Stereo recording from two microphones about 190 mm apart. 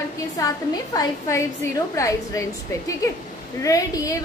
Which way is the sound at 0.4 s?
15° left (ahead or behind).